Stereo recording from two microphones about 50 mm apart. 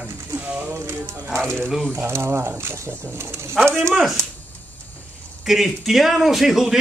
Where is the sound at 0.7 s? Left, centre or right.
Right.